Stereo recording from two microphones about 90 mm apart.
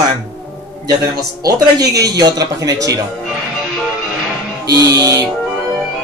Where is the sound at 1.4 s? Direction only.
40° right (ahead or behind).